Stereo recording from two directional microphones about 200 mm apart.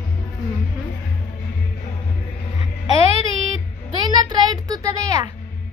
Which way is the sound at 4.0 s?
20° right (ahead or behind).